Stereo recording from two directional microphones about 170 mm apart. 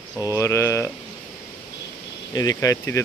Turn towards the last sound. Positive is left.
turn(degrees=15)  # may be behind; listen again after turning